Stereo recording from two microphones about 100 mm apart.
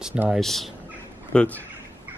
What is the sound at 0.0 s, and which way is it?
Speech, 15° right (ahead or behind).